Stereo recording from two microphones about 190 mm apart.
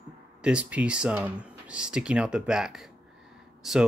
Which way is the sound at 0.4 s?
5° right (ahead or behind).